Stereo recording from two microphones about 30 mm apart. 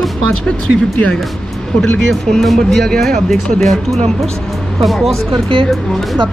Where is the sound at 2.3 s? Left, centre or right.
Centre.